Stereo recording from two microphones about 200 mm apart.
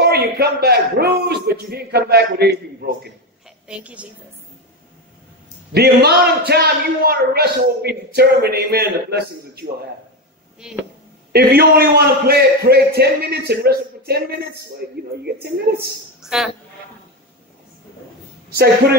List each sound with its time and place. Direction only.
0.0 s a man's voice: 50° right (ahead or behind)
3.4 s a sound: 5° right (ahead or behind)
5.7 s a man's voice: 55° right (ahead or behind)
10.6 s speech: 5° right (ahead or behind)
11.3 s a man's voice: 50° right (ahead or behind)
16.2 s a sound: centre (ahead or behind)